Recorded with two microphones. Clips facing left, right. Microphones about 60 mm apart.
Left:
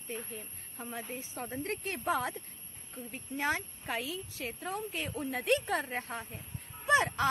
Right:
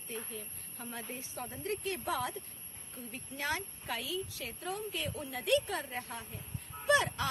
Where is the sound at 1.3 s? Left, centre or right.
Left.